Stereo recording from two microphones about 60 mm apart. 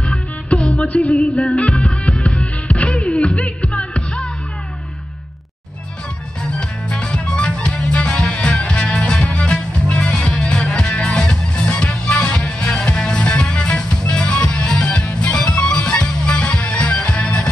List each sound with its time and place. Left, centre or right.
0.0 s music: centre
0.8 s music: left
1.1 s music: centre
3.1 s music: centre
3.4 s music: centre
6.5 s music: centre